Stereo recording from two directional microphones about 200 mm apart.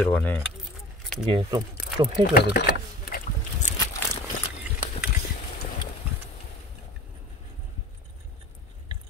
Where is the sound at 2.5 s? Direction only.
45° left (ahead or behind).